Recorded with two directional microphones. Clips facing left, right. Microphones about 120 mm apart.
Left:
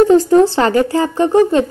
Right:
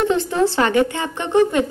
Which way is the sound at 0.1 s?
35° left (ahead or behind).